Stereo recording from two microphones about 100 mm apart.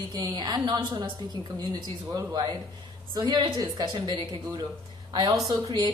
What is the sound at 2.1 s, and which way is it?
Speech, 40° right (ahead or behind).